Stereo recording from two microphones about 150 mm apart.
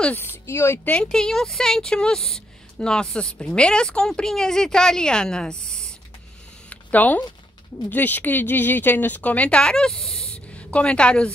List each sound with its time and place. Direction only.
0.0 s speech: 15° left (ahead or behind)
6.7 s a sound: 10° left (ahead or behind)
7.8 s a woman's voice: 10° left (ahead or behind)